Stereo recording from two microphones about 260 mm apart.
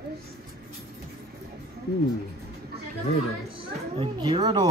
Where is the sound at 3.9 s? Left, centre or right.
Centre.